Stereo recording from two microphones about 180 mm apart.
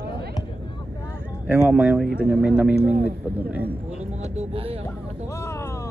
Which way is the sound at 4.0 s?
35° right (ahead or behind).